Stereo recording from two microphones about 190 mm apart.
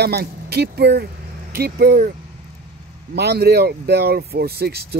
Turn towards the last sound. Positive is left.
turn(degrees=-55)  # may be behind; listen again after turning